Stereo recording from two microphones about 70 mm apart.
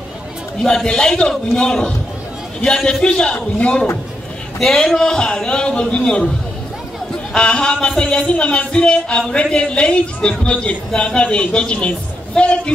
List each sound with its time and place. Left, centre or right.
0.6 s a man's voice: centre
4.6 s a man's voice: centre